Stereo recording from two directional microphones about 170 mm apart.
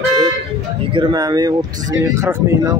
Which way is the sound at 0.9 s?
20° right (ahead or behind).